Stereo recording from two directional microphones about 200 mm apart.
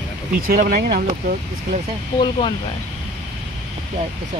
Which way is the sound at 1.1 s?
40° right (ahead or behind).